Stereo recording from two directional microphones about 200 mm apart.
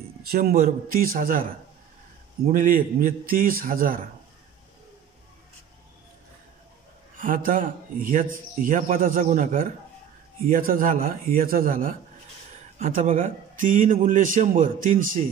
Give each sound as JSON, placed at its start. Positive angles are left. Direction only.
{"t": 0.3, "sound": "speech", "side_deg": -45}
{"t": 2.4, "sound": "speech", "side_deg": -40}
{"t": 7.2, "sound": "speech", "side_deg": -40}